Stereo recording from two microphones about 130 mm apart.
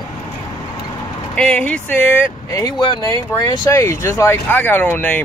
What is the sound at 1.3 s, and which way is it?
Speech, 10° left (ahead or behind).